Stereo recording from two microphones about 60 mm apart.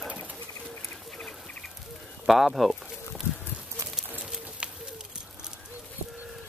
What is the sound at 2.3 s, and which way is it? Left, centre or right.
Speech, centre.